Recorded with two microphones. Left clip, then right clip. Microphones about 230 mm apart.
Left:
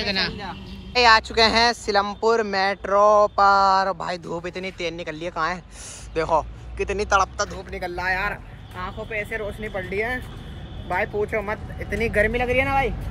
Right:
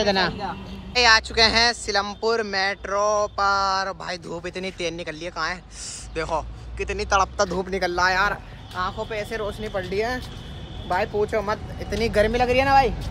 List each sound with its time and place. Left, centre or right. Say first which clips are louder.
0.4 s speech: right 3 dB; centre
3.3 s a sound: left 5 dB; centre
3.6 s speech: left 5 dB; centre
7.3 s speech: right 5 dB; right